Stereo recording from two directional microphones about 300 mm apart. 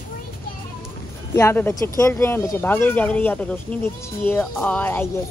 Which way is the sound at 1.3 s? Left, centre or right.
Centre.